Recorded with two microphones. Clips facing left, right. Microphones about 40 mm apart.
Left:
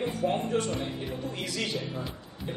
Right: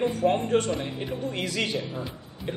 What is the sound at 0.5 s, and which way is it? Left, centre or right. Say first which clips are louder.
Speech: right 5 dB; right.